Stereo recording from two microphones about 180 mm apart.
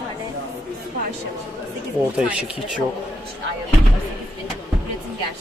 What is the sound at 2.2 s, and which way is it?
Speech, 5° right (ahead or behind).